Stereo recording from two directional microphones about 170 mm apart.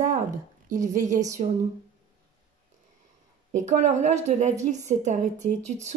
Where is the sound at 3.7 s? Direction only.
45° right (ahead or behind).